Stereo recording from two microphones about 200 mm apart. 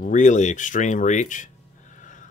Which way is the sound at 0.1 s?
35° left (ahead or behind).